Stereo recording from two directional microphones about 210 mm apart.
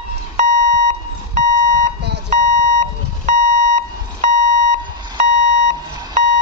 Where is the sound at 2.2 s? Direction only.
35° right (ahead or behind).